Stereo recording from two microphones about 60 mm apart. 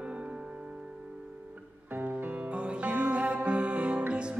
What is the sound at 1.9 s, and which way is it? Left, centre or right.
Music, right.